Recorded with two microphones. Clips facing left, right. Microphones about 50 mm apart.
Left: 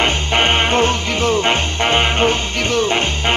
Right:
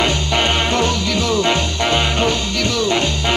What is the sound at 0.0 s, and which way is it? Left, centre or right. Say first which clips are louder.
Music: left 1 dB; left.